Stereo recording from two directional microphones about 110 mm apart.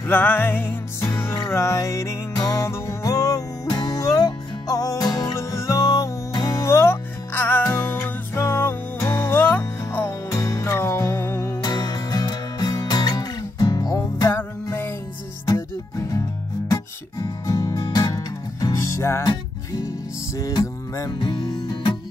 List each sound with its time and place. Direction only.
0.1 s music: 20° left (ahead or behind)
10.3 s music: 30° left (ahead or behind)
11.6 s music: 35° left (ahead or behind)
14.3 s music: 20° left (ahead or behind)
21.2 s music: 40° left (ahead or behind)